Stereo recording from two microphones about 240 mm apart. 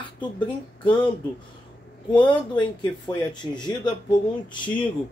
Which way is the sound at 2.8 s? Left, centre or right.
Centre.